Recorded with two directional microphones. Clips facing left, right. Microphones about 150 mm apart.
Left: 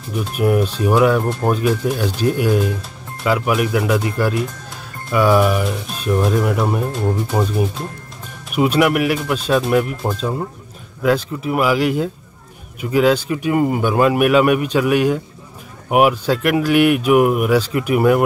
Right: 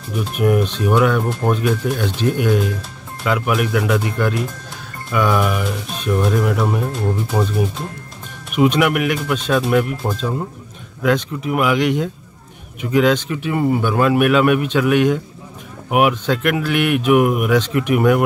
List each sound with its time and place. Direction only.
0.2 s speech: 5° left (ahead or behind)